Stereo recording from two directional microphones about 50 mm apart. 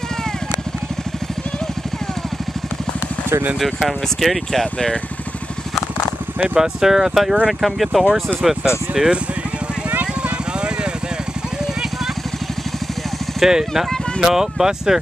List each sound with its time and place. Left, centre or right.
3.8 s speech: centre
6.5 s speech: centre
9.8 s vehicle: right
13.4 s speech: centre